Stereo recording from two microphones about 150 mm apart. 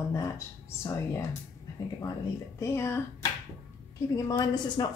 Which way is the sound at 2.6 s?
15° left (ahead or behind).